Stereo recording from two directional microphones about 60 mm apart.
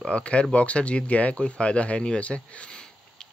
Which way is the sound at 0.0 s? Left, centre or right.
Centre.